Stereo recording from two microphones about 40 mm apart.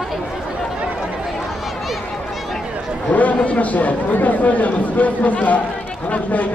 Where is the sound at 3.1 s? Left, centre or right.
Left.